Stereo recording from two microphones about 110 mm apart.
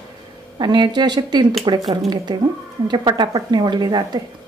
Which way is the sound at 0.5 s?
40° right (ahead or behind).